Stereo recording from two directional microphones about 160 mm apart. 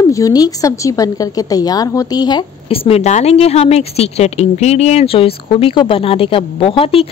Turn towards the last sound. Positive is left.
turn(degrees=35)  # may be behind; listen again after turning